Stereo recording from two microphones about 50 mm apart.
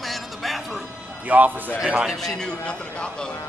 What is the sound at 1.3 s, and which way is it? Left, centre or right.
Speech, right.